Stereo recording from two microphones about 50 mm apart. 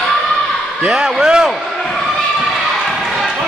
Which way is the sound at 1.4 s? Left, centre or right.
Centre.